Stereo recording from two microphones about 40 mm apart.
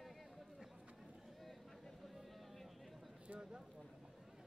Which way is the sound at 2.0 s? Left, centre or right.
Centre.